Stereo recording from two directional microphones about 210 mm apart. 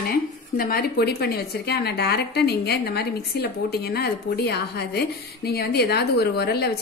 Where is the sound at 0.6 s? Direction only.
45° left (ahead or behind).